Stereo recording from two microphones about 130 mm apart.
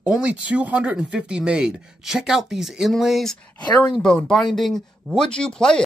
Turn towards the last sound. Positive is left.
turn(degrees=5)  # may be behind; listen again after turning